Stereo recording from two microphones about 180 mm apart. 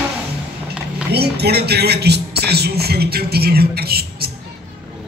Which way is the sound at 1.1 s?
65° right (ahead or behind).